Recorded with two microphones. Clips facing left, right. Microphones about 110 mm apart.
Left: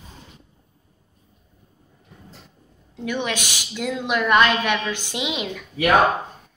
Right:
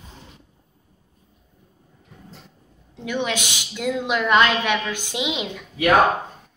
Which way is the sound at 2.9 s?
15° right (ahead or behind).